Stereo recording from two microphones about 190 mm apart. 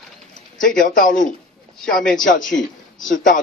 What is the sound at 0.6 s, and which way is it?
Speech, 45° left (ahead or behind).